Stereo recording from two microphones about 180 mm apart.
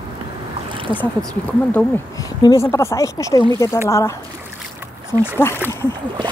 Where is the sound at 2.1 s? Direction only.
20° left (ahead or behind).